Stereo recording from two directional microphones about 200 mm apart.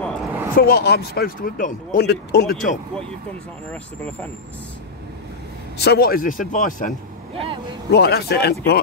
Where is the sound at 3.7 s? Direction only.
5° left (ahead or behind).